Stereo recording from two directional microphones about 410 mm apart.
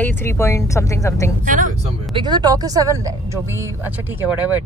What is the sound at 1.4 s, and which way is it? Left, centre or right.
Speech, centre.